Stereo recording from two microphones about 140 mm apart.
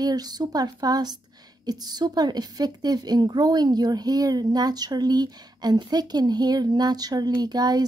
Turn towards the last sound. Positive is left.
turn(degrees=-30)  # may be behind; listen again after turning